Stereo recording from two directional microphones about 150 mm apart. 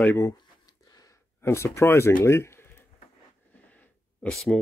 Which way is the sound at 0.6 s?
25° left (ahead or behind).